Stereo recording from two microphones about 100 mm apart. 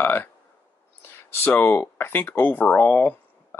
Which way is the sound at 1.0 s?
20° left (ahead or behind).